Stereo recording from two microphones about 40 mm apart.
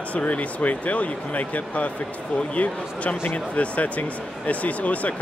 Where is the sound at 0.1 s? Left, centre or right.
Left.